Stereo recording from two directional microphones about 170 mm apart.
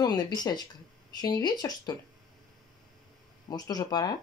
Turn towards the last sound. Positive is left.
turn(degrees=20)  # may be behind; listen again after turning